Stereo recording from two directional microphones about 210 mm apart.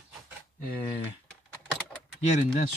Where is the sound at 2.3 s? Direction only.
35° left (ahead or behind).